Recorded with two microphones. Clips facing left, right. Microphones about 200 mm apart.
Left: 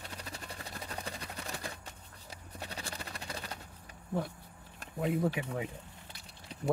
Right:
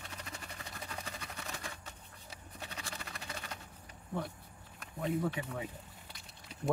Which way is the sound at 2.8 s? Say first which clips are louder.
Left 3 dB; 35° left (ahead or behind).